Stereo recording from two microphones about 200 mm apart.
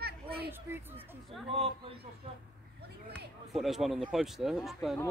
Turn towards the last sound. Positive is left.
turn(degrees=0)  # may be behind; listen again after turning